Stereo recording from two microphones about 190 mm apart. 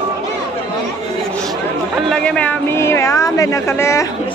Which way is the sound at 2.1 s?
5° left (ahead or behind).